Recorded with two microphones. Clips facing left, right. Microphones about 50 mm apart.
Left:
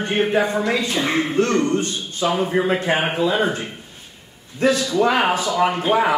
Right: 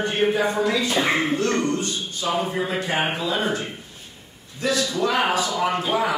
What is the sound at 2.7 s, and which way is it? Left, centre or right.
Speech, left.